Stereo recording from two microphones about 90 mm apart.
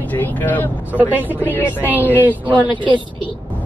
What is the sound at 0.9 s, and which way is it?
A woman's voice, 20° right (ahead or behind).